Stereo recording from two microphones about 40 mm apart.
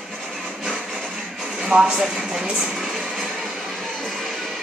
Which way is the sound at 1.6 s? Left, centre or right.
Right.